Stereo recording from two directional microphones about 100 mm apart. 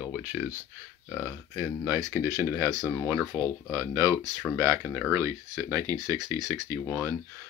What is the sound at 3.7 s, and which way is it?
Speech, 35° right (ahead or behind).